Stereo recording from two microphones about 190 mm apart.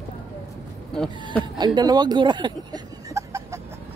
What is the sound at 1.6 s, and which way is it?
Speech, 20° right (ahead or behind).